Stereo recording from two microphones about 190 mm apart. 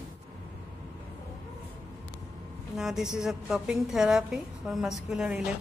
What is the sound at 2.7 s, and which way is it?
A woman's voice, 5° right (ahead or behind).